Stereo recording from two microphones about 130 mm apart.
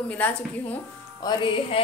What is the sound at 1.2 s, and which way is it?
Music, 40° left (ahead or behind).